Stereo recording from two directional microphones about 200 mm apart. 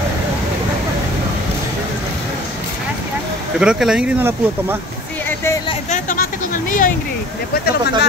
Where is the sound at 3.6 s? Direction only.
5° right (ahead or behind).